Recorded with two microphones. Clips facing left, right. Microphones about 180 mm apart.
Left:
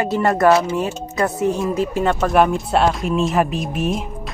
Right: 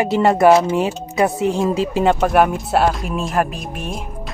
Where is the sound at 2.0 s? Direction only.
15° right (ahead or behind).